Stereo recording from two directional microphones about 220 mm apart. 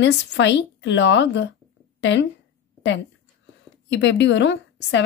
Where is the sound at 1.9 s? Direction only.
55° left (ahead or behind).